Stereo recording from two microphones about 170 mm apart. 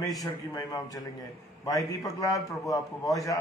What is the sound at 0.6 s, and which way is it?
A man's voice, 20° left (ahead or behind).